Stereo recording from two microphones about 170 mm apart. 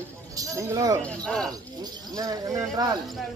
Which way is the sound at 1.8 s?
20° right (ahead or behind).